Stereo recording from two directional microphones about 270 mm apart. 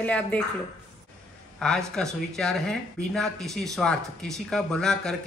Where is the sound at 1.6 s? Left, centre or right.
Centre.